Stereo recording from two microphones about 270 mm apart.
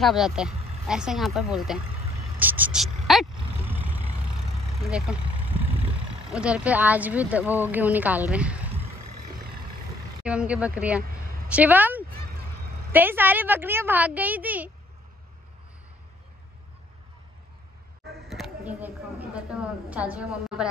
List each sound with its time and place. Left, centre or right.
0.0 s speech: centre
2.3 s vehicle: centre
4.8 s vehicle: centre
6.3 s speech: centre
10.2 s speech: centre
18.0 s a sound: centre